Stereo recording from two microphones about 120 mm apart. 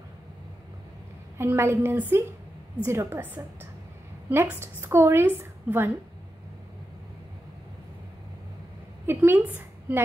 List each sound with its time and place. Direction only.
1.4 s a woman's voice: 20° right (ahead or behind)
4.3 s a woman's voice: 20° right (ahead or behind)
9.0 s a woman's voice: 20° right (ahead or behind)